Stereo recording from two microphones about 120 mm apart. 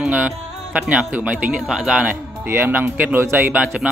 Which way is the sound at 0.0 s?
15° right (ahead or behind).